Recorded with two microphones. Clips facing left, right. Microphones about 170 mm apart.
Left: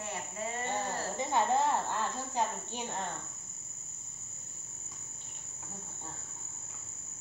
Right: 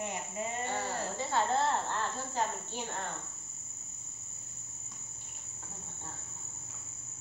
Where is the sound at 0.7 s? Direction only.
15° left (ahead or behind).